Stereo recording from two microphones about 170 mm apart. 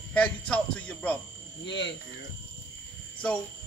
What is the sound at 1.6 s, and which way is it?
Speech, 90° left.